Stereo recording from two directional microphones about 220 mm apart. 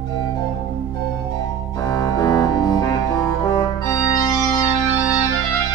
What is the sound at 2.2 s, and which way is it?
Music, 15° left (ahead or behind).